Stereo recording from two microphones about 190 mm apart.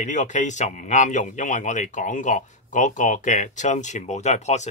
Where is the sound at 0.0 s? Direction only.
40° left (ahead or behind).